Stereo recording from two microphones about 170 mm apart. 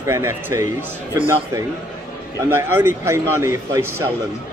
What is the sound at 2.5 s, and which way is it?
Speech, 15° right (ahead or behind).